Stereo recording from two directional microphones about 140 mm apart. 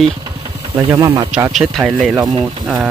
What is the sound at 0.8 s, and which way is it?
Speech, 25° right (ahead or behind).